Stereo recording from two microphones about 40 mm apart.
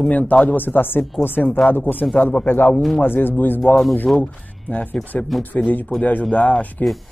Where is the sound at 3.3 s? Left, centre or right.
Left.